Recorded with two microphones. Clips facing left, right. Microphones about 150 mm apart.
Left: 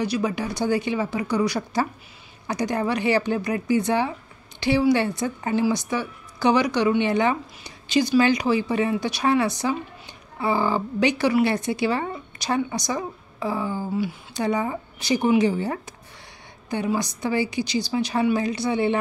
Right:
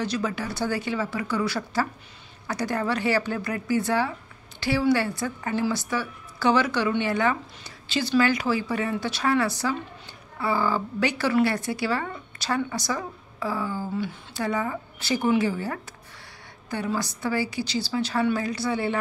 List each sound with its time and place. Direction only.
0.0 s a woman's voice: 15° left (ahead or behind)